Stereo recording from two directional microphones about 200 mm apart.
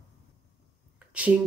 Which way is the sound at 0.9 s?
5° right (ahead or behind).